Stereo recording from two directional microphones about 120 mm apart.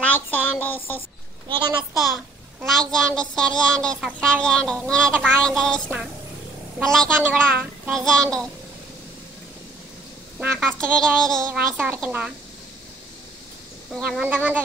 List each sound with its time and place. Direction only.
0.0 s speech: 15° left (ahead or behind)
1.8 s a child's voice: 5° right (ahead or behind)
10.4 s a child's voice: 15° right (ahead or behind)
11.0 s a child's voice: 5° left (ahead or behind)
11.5 s a child's voice: 15° right (ahead or behind)
13.9 s a child's voice: centre (ahead or behind)
14.2 s a child's voice: 15° right (ahead or behind)